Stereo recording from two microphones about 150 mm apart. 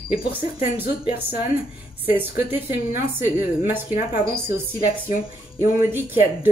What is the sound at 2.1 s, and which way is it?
A woman's voice, 10° right (ahead or behind).